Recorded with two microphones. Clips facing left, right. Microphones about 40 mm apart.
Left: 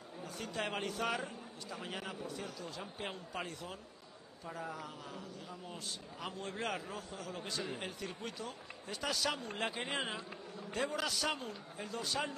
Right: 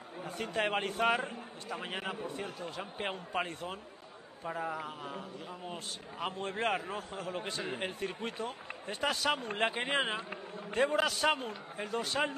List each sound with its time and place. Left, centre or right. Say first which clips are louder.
0.2 s a man's voice: right 6 dB; right